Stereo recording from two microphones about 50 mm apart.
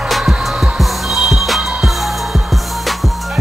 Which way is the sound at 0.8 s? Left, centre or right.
Centre.